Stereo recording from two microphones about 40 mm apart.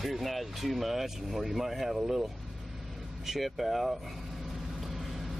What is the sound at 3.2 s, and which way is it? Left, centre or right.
Speech, centre.